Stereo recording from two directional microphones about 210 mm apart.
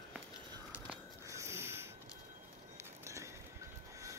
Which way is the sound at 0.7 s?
10° right (ahead or behind).